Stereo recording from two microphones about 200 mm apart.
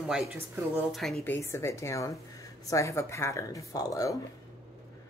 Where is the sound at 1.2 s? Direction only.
10° left (ahead or behind).